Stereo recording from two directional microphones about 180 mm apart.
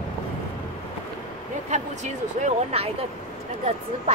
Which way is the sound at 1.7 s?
40° right (ahead or behind).